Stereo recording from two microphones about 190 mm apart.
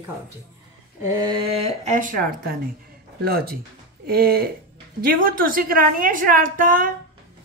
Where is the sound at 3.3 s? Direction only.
55° right (ahead or behind).